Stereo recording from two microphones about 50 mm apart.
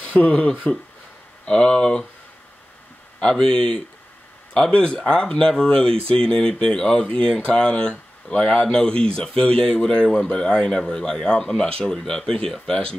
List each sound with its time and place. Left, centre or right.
0.0 s speech: left
3.2 s speech: centre